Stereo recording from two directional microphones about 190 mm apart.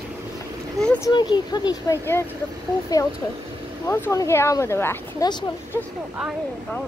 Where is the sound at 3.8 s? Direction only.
15° left (ahead or behind).